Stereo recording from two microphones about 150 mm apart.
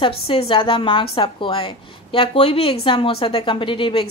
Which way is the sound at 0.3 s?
35° left (ahead or behind).